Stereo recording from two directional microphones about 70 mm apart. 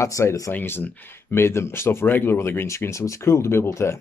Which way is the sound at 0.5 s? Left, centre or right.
Left.